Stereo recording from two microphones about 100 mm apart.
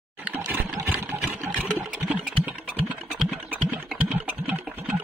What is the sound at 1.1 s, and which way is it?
Engine, 15° right (ahead or behind).